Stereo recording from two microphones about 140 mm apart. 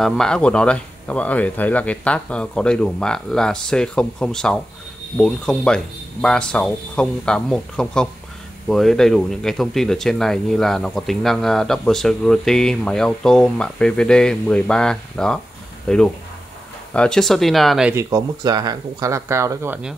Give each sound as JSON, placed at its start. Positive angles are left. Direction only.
{"t": 0.0, "sound": "speech", "side_deg": 0}
{"t": 17.9, "sound": "speech", "side_deg": -25}